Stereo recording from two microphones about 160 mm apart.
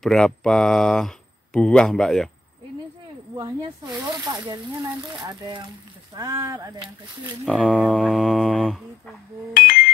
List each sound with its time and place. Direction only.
0.0 s speech: 5° left (ahead or behind)
3.3 s speech: 30° right (ahead or behind)
7.4 s speech: 5° right (ahead or behind)
9.5 s a sound: 60° left (ahead or behind)